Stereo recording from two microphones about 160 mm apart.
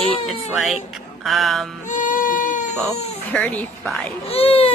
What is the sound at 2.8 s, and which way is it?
Speech, 5° left (ahead or behind).